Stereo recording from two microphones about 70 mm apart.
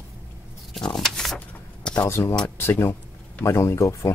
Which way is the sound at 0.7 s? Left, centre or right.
Centre.